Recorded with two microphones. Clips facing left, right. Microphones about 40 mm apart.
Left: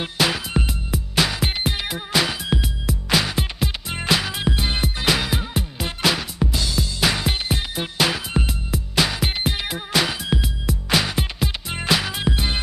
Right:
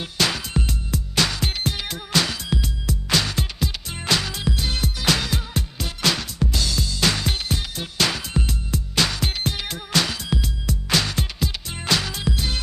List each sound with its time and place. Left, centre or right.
0.2 s music: centre
4.4 s music: left
5.0 s music: centre
7.5 s music: left
8.0 s music: centre
12.2 s music: left